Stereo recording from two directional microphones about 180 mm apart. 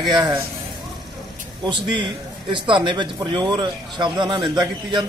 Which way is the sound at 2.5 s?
25° right (ahead or behind).